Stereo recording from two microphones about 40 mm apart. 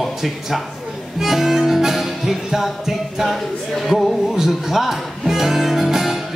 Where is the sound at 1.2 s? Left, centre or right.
Centre.